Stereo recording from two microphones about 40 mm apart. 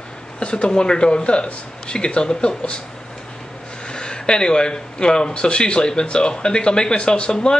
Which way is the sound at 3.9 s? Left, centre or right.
Left.